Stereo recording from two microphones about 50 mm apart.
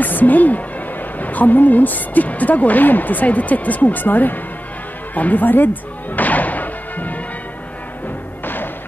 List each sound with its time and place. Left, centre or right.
0.0 s a woman's voice: left
5.1 s music: left